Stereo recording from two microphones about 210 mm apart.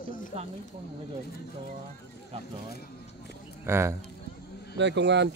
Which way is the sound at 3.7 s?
10° right (ahead or behind).